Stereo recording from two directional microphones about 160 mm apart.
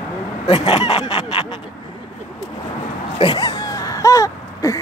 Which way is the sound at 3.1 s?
30° left (ahead or behind).